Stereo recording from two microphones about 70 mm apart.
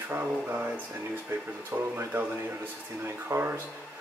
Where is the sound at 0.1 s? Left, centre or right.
Right.